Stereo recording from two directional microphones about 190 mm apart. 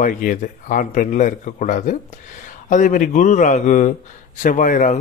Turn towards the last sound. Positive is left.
turn(degrees=40)  # may be behind; listen again after turning